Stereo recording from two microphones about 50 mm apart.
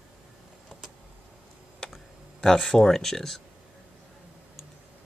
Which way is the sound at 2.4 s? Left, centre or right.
Centre.